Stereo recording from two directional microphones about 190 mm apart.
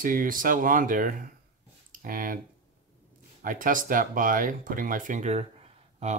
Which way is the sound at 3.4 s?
45° right (ahead or behind).